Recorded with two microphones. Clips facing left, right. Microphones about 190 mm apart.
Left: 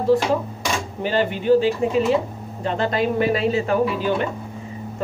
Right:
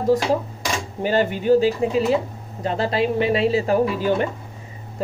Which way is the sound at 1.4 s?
40° right (ahead or behind).